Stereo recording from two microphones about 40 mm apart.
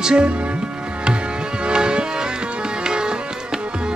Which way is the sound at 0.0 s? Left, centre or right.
Right.